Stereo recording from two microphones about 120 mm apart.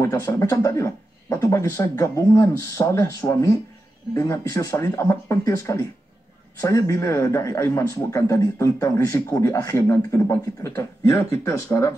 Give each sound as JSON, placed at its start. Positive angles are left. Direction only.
{"t": 0.0, "sound": "a man's voice", "side_deg": 25}